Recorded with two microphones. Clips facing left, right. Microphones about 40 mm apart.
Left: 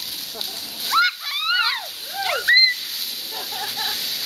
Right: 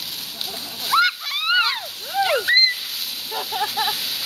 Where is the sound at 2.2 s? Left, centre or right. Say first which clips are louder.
Left 1 dB; centre.